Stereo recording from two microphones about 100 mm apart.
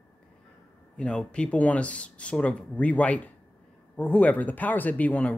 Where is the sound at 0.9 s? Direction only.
10° left (ahead or behind).